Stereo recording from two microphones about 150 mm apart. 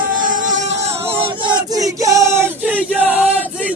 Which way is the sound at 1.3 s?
30° right (ahead or behind).